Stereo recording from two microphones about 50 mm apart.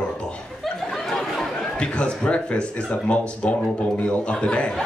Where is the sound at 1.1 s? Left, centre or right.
Centre.